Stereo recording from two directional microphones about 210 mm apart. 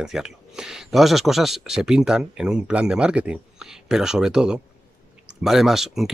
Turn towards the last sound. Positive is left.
turn(degrees=0)  # may be behind; listen again after turning